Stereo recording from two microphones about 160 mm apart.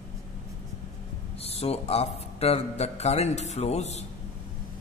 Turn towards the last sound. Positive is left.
turn(degrees=45)  # may be behind; listen again after turning